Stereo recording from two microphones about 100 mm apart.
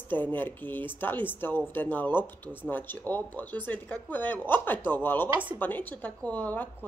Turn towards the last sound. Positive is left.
turn(degrees=15)  # may be behind; listen again after turning